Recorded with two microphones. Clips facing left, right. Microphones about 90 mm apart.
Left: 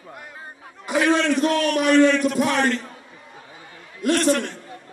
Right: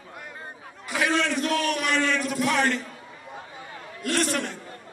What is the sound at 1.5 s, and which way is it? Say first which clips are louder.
A man's voice: left 6 dB; centre (ahead or behind).